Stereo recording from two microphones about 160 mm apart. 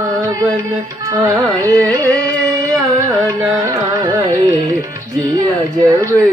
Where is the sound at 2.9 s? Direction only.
20° right (ahead or behind).